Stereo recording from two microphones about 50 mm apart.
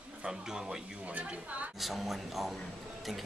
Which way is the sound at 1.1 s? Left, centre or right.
Right.